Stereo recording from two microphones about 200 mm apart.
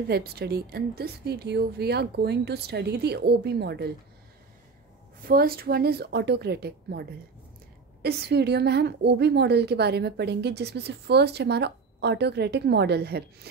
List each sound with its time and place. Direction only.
0.1 s a woman's voice: 50° right (ahead or behind)
5.2 s a woman's voice: 50° right (ahead or behind)